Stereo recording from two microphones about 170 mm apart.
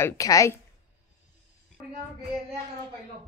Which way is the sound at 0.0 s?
20° left (ahead or behind).